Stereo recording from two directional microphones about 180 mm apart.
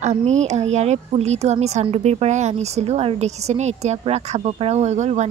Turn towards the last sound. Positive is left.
turn(degrees=-40)  # may be behind; listen again after turning